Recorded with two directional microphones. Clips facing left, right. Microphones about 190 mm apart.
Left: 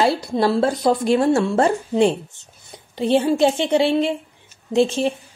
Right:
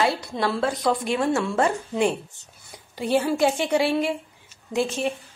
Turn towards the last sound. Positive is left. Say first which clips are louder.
# left 6 dB
turn(degrees=30)  # may be behind; listen again after turning